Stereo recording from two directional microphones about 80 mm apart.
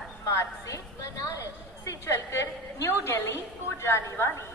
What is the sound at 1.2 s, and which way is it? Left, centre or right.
A woman's voice, left.